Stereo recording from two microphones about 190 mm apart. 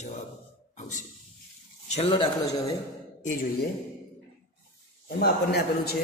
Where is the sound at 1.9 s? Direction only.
30° left (ahead or behind).